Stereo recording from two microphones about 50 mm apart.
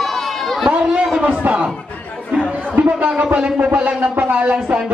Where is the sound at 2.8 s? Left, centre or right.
Right.